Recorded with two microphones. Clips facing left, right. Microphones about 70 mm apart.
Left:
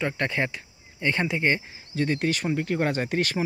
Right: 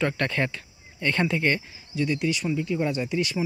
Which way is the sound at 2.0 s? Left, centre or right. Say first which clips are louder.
Even; left.